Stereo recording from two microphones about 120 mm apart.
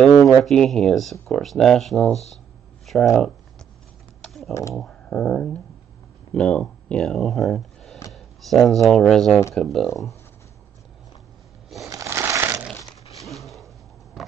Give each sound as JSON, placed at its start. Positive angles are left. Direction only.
{"t": 0.4, "sound": "speech", "side_deg": 5}
{"t": 2.9, "sound": "a sound", "side_deg": 0}
{"t": 4.2, "sound": "typing", "side_deg": 0}
{"t": 4.7, "sound": "speech", "side_deg": 5}
{"t": 11.9, "sound": "crushing", "side_deg": -25}
{"t": 13.3, "sound": "a sound", "side_deg": 0}